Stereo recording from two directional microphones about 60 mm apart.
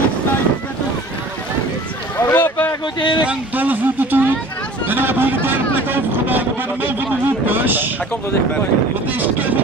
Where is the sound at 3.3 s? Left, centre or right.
Right.